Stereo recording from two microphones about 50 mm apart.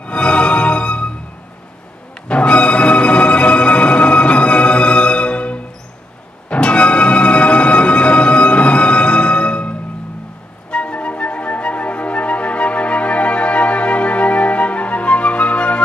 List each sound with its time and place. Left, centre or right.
0.0 s music: left
2.2 s music: left